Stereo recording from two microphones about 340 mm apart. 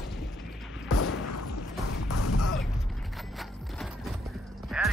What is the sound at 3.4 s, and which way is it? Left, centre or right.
Horse, centre.